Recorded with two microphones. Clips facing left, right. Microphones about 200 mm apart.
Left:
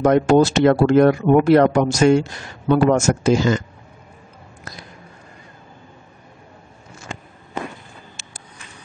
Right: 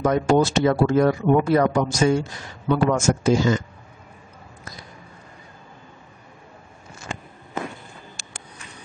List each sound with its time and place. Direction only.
0.0 s speech: 70° left (ahead or behind)